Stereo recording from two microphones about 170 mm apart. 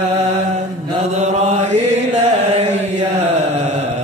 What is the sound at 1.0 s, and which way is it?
Mantra, 40° right (ahead or behind).